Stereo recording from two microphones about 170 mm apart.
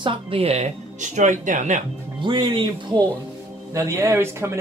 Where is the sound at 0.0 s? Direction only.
30° right (ahead or behind).